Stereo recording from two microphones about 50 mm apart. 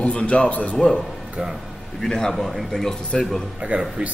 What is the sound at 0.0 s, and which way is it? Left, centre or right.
Speech, left.